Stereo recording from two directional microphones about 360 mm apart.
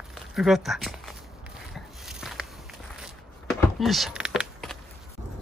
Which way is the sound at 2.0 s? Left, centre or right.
Centre.